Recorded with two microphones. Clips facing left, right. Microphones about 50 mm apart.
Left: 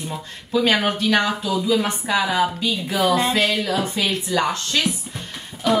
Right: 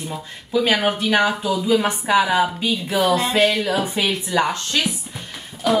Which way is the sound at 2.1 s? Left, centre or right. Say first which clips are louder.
Right 2 dB; centre.